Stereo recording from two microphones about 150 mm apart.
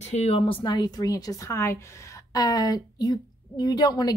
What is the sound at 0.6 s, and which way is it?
A woman's voice, 30° left (ahead or behind).